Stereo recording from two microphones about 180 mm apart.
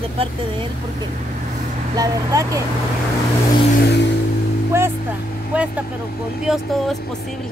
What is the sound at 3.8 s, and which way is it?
Music, 70° left (ahead or behind).